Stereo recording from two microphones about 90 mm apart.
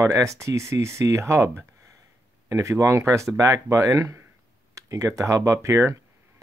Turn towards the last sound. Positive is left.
turn(degrees=-30)  # may be behind; listen again after turning